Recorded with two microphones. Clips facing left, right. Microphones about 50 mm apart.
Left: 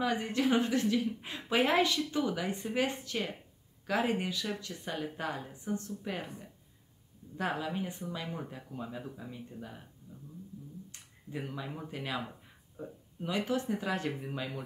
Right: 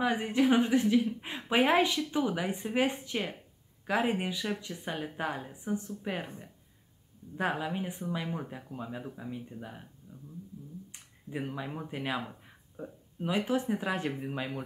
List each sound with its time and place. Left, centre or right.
0.0 s a woman's voice: centre
6.2 s a woman's voice: right
7.3 s speech: centre
10.1 s speech: right
10.9 s a sound: centre
11.9 s speech: centre